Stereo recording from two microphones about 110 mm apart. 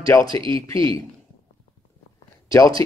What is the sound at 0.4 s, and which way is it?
Speech, 55° right (ahead or behind).